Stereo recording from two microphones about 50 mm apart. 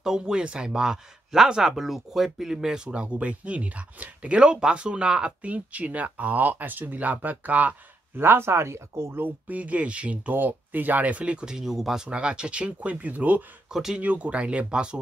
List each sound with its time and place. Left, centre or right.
0.0 s a man's voice: centre
2.9 s speech: right
8.2 s speech: right
9.2 s speech: right; by 12.1 s centre
12.1 s speech: centre
13.7 s speech: centre
14.0 s speech: right